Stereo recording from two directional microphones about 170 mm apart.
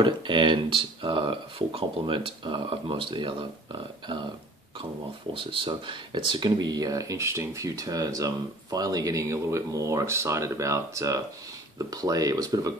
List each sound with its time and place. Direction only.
0.0 s speech: 30° right (ahead or behind)
5.3 s speech: 30° right (ahead or behind)